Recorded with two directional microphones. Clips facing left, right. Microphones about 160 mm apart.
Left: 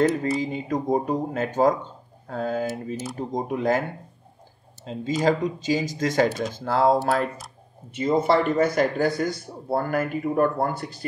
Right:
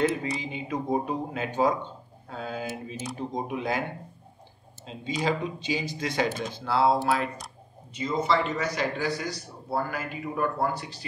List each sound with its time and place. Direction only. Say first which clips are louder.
0.4 s speech: left 6 dB; 40° left (ahead or behind)
4.9 s speech: left 6 dB; 40° left (ahead or behind)